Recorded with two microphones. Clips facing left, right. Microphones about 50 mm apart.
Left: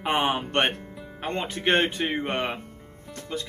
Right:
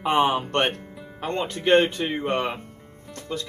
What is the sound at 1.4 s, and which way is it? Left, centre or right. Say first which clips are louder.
Speech: right 5 dB; centre.